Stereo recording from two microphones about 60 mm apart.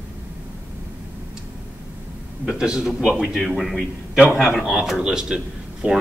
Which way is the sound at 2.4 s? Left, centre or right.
Centre.